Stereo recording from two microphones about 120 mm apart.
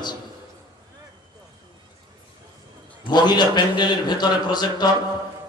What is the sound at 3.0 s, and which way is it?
A man's voice, 35° left (ahead or behind).